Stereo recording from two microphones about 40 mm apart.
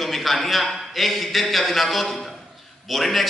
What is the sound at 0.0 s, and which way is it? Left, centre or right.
A man's voice, centre.